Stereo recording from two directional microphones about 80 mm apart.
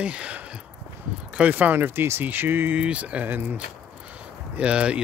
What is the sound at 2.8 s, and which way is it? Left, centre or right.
Speech, centre.